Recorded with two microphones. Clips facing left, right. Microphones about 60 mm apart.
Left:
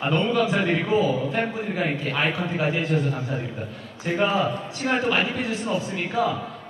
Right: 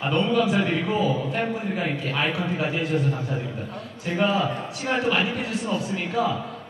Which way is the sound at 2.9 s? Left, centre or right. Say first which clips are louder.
Even; centre.